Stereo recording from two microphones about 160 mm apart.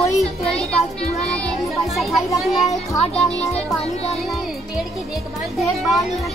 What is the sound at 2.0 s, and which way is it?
Speech, centre (ahead or behind).